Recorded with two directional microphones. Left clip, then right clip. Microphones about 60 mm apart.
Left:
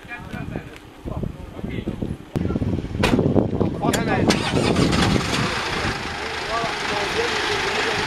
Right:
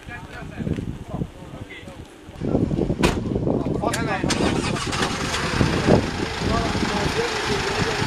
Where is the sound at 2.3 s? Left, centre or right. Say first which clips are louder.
Right 3 dB; centre.